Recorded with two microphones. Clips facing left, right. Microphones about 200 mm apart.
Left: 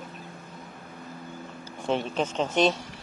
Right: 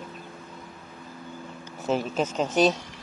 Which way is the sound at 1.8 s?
5° right (ahead or behind).